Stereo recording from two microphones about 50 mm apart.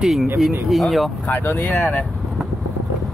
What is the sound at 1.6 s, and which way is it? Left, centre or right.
Speech, left.